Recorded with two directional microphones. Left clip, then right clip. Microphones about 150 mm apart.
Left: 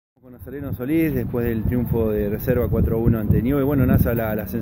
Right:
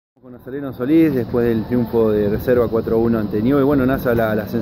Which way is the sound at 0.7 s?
25° left (ahead or behind).